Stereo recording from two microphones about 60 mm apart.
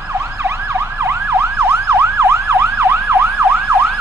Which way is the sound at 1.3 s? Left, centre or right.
Right.